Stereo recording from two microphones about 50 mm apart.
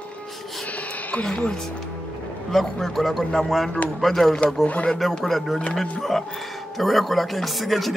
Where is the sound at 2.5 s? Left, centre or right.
Centre.